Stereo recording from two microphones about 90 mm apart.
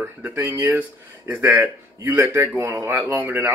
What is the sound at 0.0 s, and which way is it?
Speech, 25° right (ahead or behind).